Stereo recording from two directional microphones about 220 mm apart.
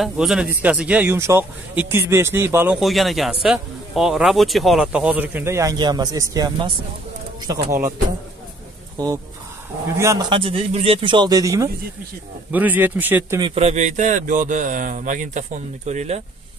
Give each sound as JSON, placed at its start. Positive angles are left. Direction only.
{"t": 0.0, "sound": "a man's voice", "side_deg": 0}
{"t": 8.9, "sound": "speech", "side_deg": -15}
{"t": 13.4, "sound": "speech", "side_deg": -30}